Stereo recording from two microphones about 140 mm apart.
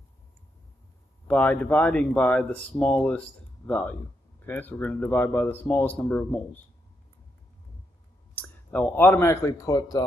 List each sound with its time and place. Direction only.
1.2 s speech: 10° left (ahead or behind)
8.4 s speech: 10° left (ahead or behind); by 10.0 s 25° left (ahead or behind)